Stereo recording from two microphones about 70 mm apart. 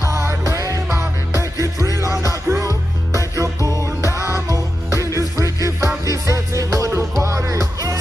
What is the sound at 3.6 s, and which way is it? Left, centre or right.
Music, right.